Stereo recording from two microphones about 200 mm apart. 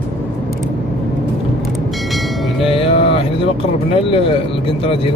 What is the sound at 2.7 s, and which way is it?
Music, 30° left (ahead or behind).